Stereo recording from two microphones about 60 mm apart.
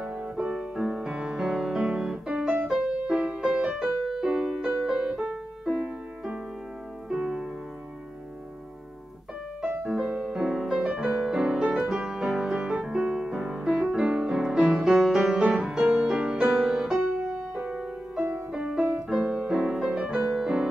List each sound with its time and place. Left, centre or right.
0.0 s music: centre
0.5 s music: centre
5.1 s music: centre
9.9 s music: centre